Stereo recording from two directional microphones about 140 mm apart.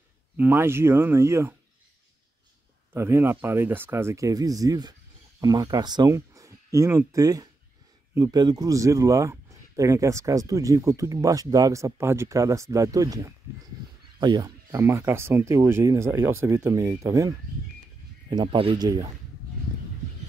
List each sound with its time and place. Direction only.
0.4 s speech: 15° right (ahead or behind)
2.9 s speech: 20° right (ahead or behind)
18.3 s speech: 35° right (ahead or behind)
18.9 s speech: 25° right (ahead or behind)